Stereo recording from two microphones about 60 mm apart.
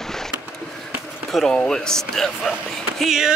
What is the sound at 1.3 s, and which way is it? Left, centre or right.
Speech, centre.